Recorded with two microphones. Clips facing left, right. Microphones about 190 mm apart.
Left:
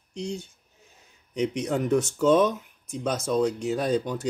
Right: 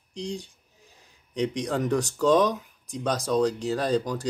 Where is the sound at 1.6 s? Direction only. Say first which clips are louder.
Left 3 dB; 5° left (ahead or behind).